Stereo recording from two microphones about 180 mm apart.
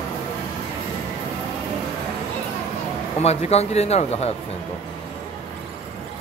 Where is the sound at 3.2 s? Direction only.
35° left (ahead or behind).